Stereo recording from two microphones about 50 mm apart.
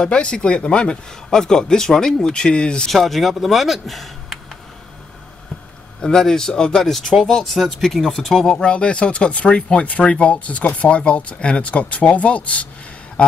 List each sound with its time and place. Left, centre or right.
0.0 s speech: centre
2.9 s speech: centre
5.9 s speech: centre; by 12.6 s left